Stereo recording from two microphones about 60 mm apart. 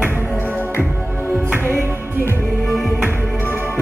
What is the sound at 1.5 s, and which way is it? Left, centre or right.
Music, right.